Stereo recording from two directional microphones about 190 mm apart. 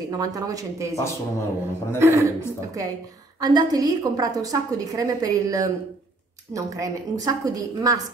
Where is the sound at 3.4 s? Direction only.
20° right (ahead or behind).